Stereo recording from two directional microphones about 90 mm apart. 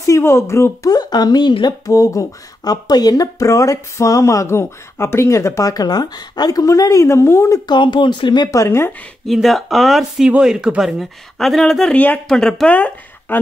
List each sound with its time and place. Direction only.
0.0 s speech: 30° left (ahead or behind)
0.8 s speech: 50° left (ahead or behind)
1.9 s speech: 40° left (ahead or behind)
7.6 s speech: 60° left (ahead or behind)
8.5 s speech: 30° left (ahead or behind)
9.2 s speech: centre (ahead or behind)
12.7 s speech: 20° left (ahead or behind)